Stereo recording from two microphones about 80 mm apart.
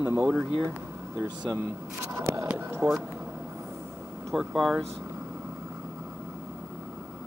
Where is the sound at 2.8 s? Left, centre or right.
Right.